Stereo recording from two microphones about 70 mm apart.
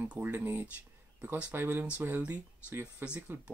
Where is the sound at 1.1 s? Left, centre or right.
Centre.